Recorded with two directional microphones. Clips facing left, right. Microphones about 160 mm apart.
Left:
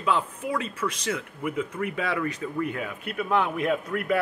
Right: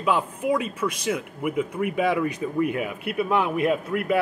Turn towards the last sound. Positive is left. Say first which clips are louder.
# right 2 dB
turn(degrees=-5)  # may be behind; listen again after turning